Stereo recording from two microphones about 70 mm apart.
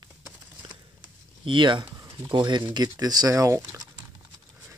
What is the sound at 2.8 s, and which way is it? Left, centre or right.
Speech, right.